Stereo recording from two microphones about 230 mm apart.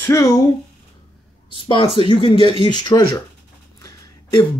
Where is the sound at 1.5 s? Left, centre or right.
Left.